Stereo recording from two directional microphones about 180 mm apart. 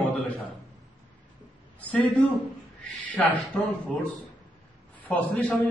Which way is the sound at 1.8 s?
10° left (ahead or behind).